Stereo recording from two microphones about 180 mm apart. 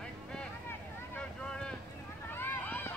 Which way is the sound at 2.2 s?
10° left (ahead or behind).